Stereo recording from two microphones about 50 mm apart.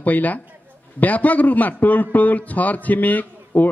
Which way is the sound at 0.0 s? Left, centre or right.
Left.